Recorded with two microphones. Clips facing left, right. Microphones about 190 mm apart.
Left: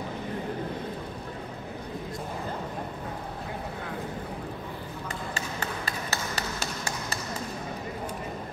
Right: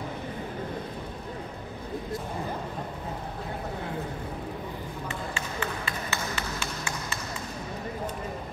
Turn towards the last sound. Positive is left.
turn(degrees=40)  # may be behind; listen again after turning